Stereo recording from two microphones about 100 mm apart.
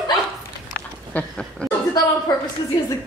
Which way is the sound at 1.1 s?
10° left (ahead or behind).